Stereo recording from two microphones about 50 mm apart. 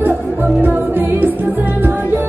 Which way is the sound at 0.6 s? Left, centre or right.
Right.